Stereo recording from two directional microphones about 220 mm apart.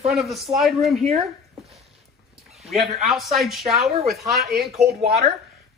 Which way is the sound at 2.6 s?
Centre (ahead or behind).